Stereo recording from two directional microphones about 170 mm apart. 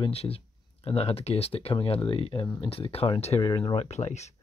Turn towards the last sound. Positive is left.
turn(degrees=40)  # may be behind; listen again after turning